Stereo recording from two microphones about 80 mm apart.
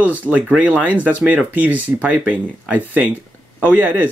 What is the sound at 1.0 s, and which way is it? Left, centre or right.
Speech, centre.